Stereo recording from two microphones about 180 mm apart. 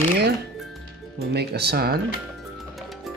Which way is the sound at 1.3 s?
65° right (ahead or behind).